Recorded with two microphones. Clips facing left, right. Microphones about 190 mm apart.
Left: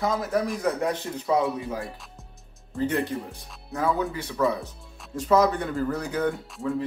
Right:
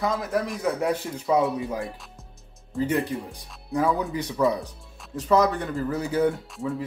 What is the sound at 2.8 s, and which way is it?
Speech, centre (ahead or behind).